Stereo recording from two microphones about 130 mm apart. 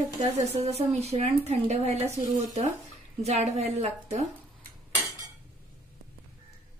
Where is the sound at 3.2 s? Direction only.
55° right (ahead or behind).